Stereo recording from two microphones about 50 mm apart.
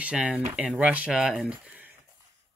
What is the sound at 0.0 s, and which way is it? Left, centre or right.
Speech, right.